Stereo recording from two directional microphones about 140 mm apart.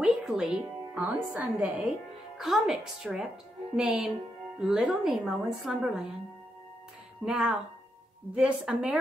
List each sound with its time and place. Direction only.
0.0 s a woman's voice: centre (ahead or behind)
7.2 s a woman's voice: 5° right (ahead or behind)